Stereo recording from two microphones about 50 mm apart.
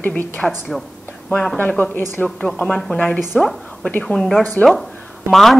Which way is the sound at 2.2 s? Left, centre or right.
Left.